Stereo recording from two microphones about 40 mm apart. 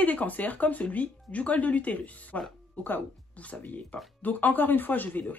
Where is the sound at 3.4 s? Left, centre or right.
Left.